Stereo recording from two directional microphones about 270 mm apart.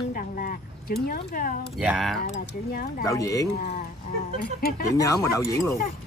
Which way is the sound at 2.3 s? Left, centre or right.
Left.